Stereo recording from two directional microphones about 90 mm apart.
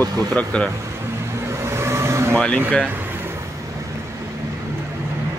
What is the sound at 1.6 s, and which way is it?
Vehicle, 30° right (ahead or behind).